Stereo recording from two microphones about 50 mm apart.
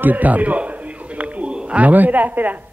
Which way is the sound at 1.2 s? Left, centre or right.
Right.